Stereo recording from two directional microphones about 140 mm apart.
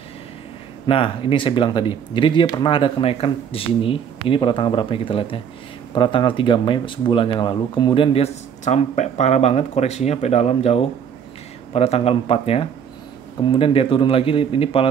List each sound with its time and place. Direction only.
0.8 s speech: 40° left (ahead or behind)